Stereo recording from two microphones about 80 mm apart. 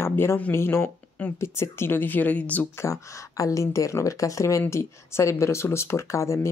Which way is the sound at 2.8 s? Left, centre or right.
Left.